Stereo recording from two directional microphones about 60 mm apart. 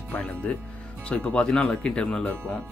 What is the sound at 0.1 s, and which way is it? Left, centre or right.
Speech, left.